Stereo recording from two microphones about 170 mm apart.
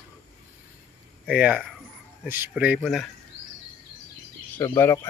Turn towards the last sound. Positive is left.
turn(degrees=15)  # may be behind; listen again after turning